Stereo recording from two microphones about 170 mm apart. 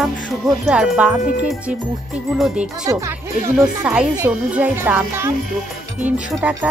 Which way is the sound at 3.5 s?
5° right (ahead or behind).